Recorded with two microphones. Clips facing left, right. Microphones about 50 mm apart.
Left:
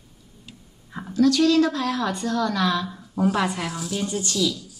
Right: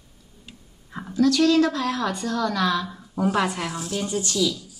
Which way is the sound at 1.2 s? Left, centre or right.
Centre.